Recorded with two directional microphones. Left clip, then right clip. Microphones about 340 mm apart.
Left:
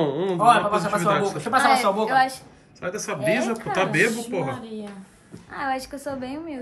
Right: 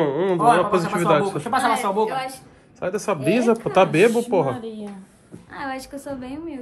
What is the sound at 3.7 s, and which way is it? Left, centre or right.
Speech, centre.